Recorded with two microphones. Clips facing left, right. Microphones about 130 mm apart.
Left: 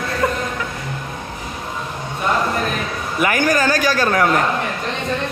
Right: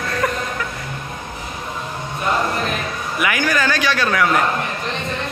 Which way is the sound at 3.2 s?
45° left (ahead or behind).